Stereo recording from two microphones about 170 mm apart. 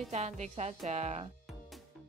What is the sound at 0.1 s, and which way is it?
Speech, 40° right (ahead or behind).